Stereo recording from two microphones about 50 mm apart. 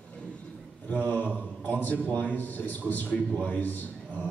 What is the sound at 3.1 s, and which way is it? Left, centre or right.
Speech, left.